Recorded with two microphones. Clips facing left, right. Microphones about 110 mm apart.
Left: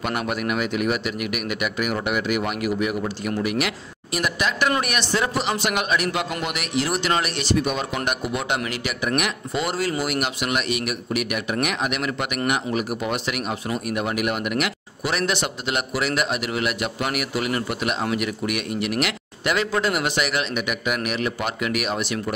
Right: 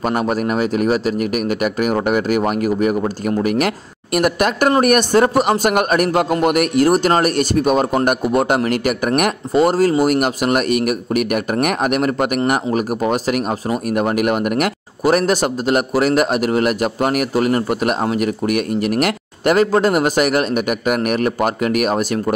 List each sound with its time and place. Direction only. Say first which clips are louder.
0.0 s a man's voice: right 7 dB; 40° right (ahead or behind)